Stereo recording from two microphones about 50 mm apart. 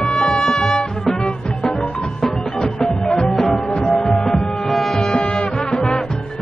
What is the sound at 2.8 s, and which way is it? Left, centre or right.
Music, centre.